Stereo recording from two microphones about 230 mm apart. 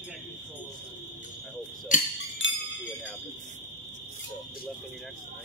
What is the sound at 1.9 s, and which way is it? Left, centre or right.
Music, left.